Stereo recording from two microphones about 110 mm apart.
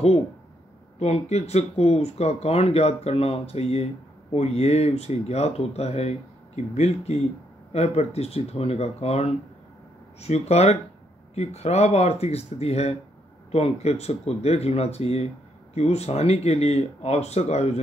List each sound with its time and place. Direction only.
0.9 s speech: 80° left